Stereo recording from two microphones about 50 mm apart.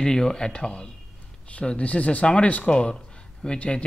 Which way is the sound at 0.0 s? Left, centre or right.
Centre.